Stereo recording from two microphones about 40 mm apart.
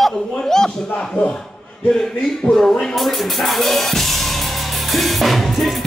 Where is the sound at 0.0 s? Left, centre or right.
Centre.